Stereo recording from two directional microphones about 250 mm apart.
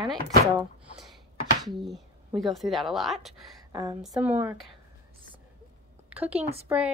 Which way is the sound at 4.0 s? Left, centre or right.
Centre.